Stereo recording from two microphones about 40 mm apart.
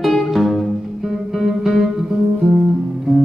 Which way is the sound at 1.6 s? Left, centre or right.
Centre.